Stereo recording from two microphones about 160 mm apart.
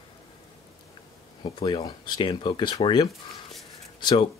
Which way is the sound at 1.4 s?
30° left (ahead or behind).